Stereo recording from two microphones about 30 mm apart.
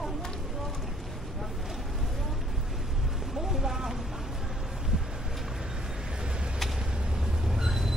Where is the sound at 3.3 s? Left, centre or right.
Centre.